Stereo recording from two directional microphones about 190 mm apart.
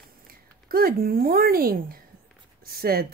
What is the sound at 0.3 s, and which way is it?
Speech, 50° right (ahead or behind).